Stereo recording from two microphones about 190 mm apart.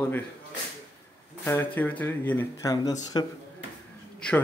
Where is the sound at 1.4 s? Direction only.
10° left (ahead or behind).